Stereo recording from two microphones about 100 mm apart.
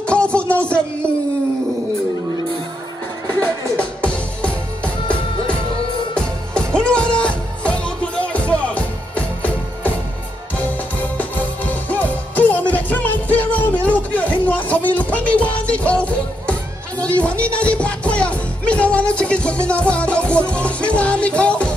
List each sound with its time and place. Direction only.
0.0 s music: 10° left (ahead or behind)
3.7 s music: 10° left (ahead or behind)
11.1 s music: 15° left (ahead or behind)